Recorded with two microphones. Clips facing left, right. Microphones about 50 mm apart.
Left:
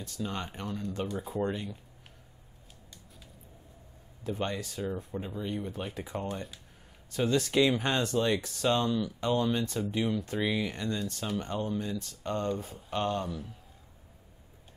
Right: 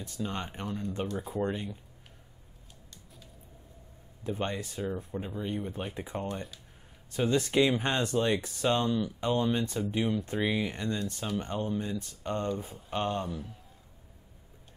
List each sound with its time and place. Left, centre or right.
0.2 s speech: centre
1.0 s speech: centre
1.5 s speech: centre
4.3 s speech: centre
5.1 s speech: centre
8.6 s speech: centre
12.4 s speech: centre